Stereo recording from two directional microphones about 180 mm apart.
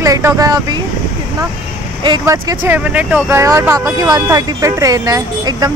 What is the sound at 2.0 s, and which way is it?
Speech, 20° right (ahead or behind).